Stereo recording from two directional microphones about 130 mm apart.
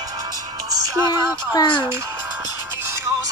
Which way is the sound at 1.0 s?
35° left (ahead or behind).